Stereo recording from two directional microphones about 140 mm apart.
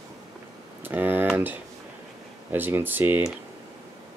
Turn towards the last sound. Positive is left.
turn(degrees=-15)  # may be behind; listen again after turning